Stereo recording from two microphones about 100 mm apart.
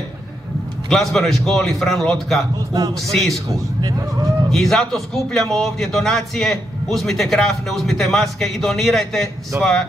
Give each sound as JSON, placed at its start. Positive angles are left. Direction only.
{"t": 0.8, "sound": "a man's voice", "side_deg": 5}
{"t": 2.7, "sound": "speech", "side_deg": -40}
{"t": 3.1, "sound": "a man's voice", "side_deg": 0}
{"t": 4.5, "sound": "a man's voice", "side_deg": 5}